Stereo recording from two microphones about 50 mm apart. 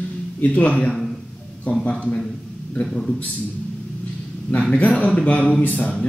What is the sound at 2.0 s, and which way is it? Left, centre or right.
A man's voice, centre.